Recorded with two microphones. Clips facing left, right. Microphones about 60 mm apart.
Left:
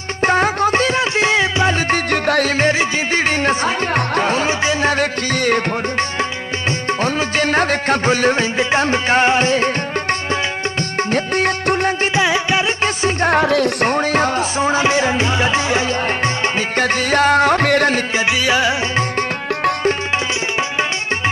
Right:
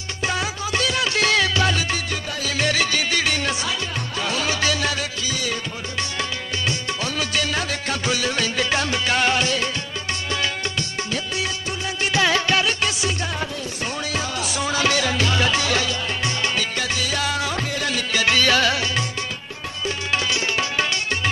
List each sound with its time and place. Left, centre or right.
0.2 s music: left
1.9 s music: left
2.6 s music: left
3.9 s music: left
4.3 s music: left
4.9 s music: left
7.0 s music: left
11.1 s music: left
12.2 s music: centre
12.8 s music: left
13.3 s music: left
14.6 s speech: left
16.5 s music: left
18.3 s speech: centre